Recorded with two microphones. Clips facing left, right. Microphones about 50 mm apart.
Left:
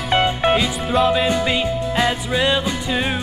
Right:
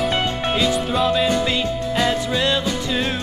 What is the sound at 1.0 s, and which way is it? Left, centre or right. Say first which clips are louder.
Music: left 1 dB; centre.